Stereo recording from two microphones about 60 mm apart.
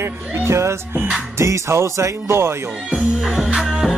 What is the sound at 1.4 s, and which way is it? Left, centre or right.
Speech, right.